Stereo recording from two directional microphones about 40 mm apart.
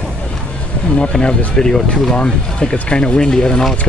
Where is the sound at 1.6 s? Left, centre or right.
Centre.